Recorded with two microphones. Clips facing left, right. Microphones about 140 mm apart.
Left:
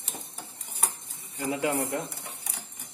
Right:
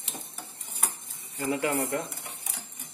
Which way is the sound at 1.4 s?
15° left (ahead or behind).